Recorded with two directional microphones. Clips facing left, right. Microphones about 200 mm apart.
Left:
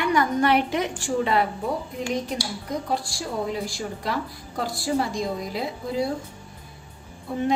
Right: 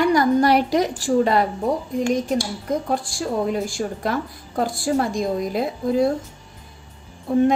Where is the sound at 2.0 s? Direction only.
50° right (ahead or behind).